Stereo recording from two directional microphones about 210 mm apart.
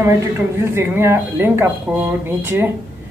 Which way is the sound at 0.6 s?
10° right (ahead or behind).